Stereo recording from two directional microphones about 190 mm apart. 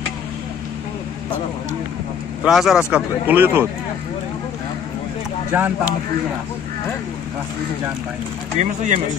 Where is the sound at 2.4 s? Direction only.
Centre (ahead or behind).